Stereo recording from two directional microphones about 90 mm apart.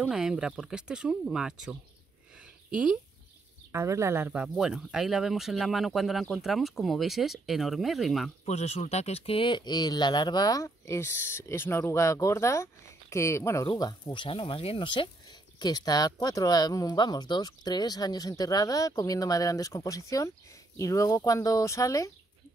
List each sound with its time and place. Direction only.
0.1 s speech: 5° right (ahead or behind)
3.7 s speech: 30° right (ahead or behind)
4.3 s speech: 10° right (ahead or behind)
9.2 s speech: 85° left; by 13.7 s 30° left (ahead or behind)
13.7 s speech: 45° left (ahead or behind)
14.1 s speech: 80° left
15.6 s speech: 50° left (ahead or behind)